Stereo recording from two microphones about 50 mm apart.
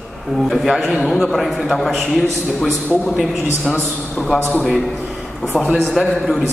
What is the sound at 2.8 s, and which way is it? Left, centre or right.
Speech, left.